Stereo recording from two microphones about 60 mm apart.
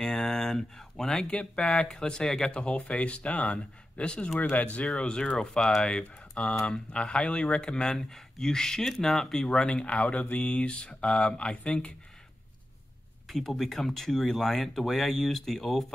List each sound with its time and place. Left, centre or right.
0.0 s speech: centre
9.9 s speech: left
13.3 s speech: centre